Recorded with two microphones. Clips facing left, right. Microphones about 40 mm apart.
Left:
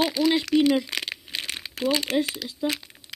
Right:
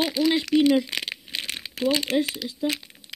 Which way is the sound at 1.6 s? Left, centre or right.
Centre.